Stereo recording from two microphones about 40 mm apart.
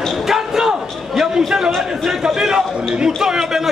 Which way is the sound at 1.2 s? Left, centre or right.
Centre.